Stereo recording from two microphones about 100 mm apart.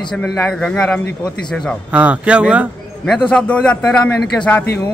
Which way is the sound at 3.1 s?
10° left (ahead or behind).